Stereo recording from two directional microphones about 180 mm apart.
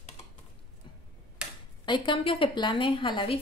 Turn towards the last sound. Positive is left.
turn(degrees=25)  # may be behind; listen again after turning